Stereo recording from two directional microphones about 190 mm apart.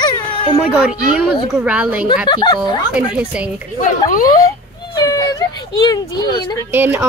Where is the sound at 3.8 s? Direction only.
45° left (ahead or behind).